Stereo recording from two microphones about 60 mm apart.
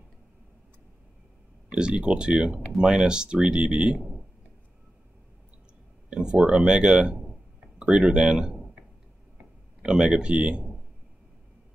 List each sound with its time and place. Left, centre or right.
1.7 s speech: centre
6.0 s speech: centre